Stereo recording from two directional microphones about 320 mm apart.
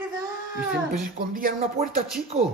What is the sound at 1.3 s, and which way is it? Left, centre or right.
A man's voice, right.